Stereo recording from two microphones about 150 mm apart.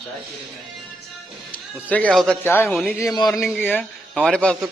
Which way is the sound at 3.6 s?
10° left (ahead or behind).